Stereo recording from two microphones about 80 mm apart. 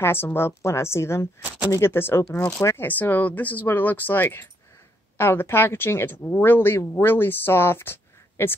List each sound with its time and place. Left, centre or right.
0.0 s a woman's voice: left